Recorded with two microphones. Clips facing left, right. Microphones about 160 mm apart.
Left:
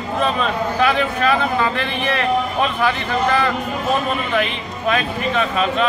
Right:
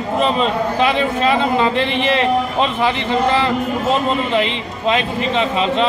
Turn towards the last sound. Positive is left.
turn(degrees=-20)  # may be behind; listen again after turning